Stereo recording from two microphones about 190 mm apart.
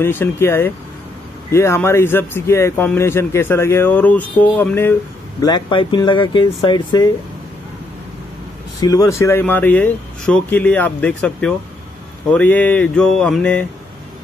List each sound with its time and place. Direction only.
0.0 s speech: 10° left (ahead or behind)
5.4 s speech: 25° left (ahead or behind)
8.8 s speech: 20° left (ahead or behind)